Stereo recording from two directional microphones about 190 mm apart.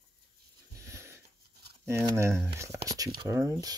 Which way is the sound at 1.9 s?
15° right (ahead or behind).